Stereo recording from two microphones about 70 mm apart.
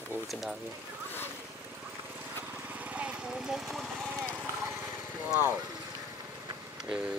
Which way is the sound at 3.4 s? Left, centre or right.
Centre.